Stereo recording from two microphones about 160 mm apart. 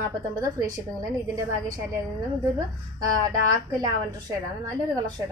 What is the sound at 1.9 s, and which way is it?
A woman's voice, 20° right (ahead or behind).